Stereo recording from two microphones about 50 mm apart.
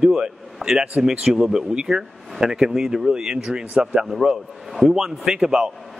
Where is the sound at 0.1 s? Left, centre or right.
Centre.